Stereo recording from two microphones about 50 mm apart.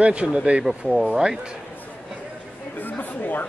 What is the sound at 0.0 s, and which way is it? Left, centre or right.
Speech, right.